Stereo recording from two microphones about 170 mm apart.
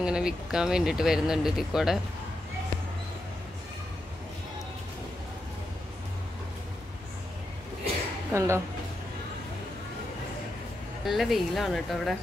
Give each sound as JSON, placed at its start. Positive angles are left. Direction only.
{"t": 0.0, "sound": "speech", "side_deg": -5}
{"t": 8.3, "sound": "speech", "side_deg": -15}
{"t": 11.1, "sound": "speech", "side_deg": 0}